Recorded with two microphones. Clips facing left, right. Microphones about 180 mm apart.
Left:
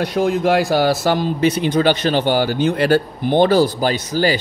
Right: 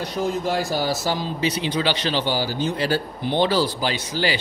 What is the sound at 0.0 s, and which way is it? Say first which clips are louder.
Speech: left 7 dB; 85° left.